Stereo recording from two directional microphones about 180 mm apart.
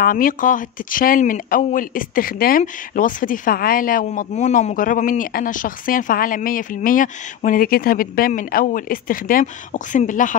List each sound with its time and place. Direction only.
0.0 s speech: 50° left (ahead or behind)